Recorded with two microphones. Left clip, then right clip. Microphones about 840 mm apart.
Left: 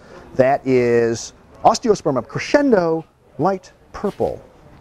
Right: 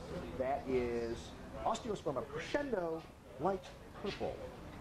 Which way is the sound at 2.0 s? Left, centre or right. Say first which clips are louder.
Left 19 dB; left.